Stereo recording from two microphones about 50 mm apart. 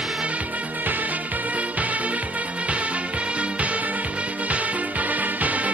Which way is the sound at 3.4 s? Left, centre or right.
Right.